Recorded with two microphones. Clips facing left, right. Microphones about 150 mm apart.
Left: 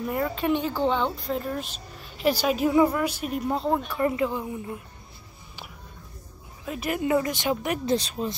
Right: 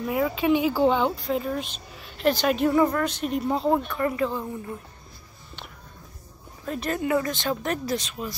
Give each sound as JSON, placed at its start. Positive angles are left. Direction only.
{"t": 0.0, "sound": "speech", "side_deg": -5}
{"t": 4.0, "sound": "speech", "side_deg": 20}
{"t": 6.6, "sound": "speech", "side_deg": 5}
{"t": 7.0, "sound": "speech", "side_deg": 20}
{"t": 7.8, "sound": "speech", "side_deg": 30}